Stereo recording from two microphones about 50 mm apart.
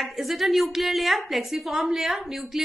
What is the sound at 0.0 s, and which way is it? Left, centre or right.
A woman's voice, centre.